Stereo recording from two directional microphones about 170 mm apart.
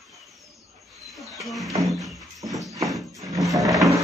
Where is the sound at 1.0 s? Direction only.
Centre (ahead or behind).